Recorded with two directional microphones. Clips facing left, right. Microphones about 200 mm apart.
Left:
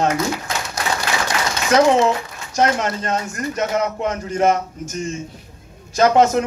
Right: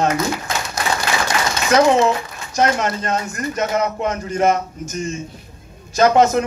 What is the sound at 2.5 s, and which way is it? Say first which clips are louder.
Speech: even; 30° left (ahead or behind).